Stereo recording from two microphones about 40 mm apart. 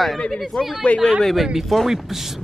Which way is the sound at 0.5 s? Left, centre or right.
Centre.